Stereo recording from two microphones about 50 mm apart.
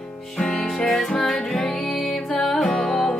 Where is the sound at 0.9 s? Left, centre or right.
Centre.